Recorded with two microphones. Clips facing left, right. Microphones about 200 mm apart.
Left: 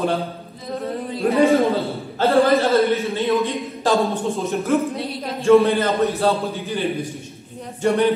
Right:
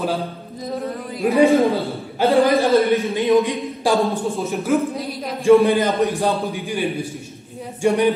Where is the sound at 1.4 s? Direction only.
15° right (ahead or behind).